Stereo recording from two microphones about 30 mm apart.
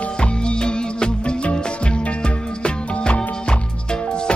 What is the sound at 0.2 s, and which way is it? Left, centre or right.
Music, left.